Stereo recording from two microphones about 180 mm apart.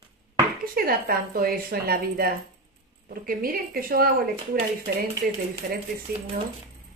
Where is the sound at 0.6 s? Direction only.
55° right (ahead or behind).